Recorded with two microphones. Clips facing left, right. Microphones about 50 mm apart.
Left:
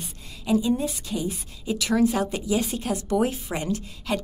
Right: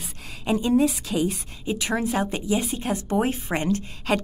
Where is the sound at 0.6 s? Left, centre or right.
Right.